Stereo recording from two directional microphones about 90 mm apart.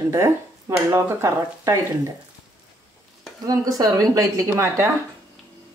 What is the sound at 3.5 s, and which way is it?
Speech, 40° right (ahead or behind).